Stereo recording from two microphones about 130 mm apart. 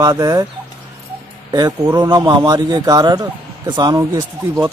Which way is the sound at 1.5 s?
30° right (ahead or behind).